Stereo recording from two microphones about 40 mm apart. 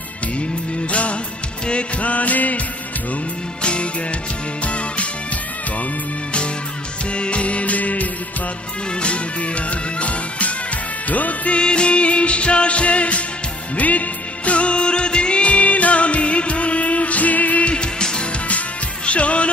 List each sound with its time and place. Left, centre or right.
1.7 s music: left
3.6 s music: left
7.1 s music: left
11.5 s music: left
17.7 s music: left
19.0 s music: left